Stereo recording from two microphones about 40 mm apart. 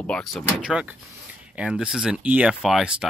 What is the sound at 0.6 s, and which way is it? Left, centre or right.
Speech, right.